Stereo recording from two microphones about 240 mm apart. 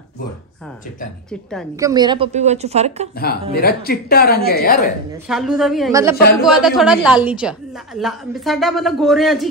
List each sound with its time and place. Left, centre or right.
1.8 s a woman's voice: centre
3.2 s speech: left
5.3 s a woman's voice: centre
5.9 s a woman's voice: centre
6.4 s a woman's voice: centre